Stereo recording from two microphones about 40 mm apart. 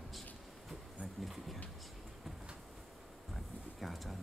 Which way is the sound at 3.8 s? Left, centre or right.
Centre.